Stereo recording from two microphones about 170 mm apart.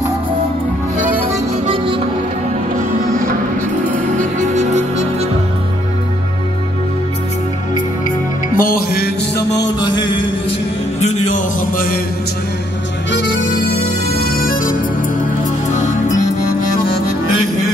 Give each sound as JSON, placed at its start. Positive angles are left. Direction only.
{"t": 3.9, "sound": "music", "side_deg": -45}
{"t": 8.5, "sound": "music", "side_deg": 60}
{"t": 9.8, "sound": "music", "side_deg": 25}
{"t": 11.0, "sound": "music", "side_deg": 45}
{"t": 13.1, "sound": "music", "side_deg": 90}
{"t": 14.2, "sound": "music", "side_deg": 60}
{"t": 15.7, "sound": "music", "side_deg": 45}